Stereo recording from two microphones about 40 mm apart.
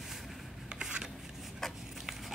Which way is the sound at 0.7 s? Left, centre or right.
Right.